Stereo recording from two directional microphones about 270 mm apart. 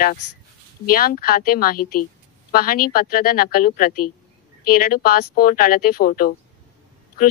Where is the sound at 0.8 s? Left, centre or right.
Left.